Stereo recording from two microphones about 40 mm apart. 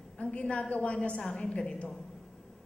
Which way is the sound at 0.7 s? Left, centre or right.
Left.